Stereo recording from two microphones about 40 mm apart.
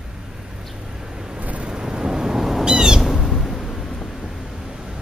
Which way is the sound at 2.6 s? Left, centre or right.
Centre.